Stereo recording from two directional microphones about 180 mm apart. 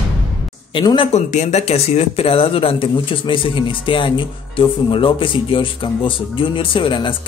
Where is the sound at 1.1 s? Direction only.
40° left (ahead or behind).